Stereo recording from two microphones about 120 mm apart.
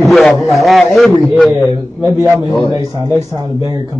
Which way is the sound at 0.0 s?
Centre (ahead or behind).